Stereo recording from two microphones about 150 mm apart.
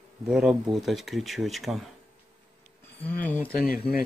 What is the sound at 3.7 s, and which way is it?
Speech, 80° left.